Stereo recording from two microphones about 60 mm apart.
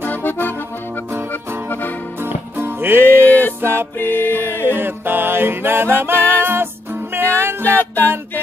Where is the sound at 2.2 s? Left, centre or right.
Right.